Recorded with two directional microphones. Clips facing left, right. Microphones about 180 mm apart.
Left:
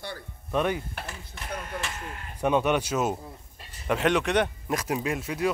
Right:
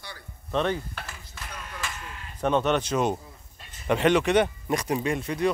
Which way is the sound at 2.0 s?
50° left (ahead or behind).